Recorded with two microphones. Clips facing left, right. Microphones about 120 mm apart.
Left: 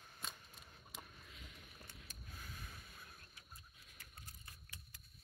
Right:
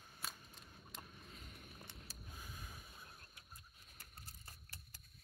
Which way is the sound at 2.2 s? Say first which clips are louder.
Left 1 dB; 15° right (ahead or behind).